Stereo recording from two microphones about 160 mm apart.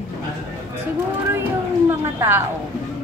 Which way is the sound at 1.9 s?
15° right (ahead or behind).